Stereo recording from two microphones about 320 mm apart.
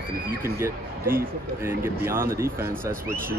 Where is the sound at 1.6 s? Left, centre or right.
Centre.